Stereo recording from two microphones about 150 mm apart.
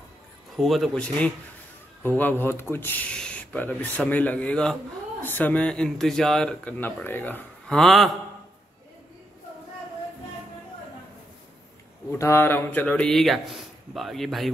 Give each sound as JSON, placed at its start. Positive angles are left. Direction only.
{"t": 0.6, "sound": "speech", "side_deg": 0}
{"t": 12.1, "sound": "speech", "side_deg": 15}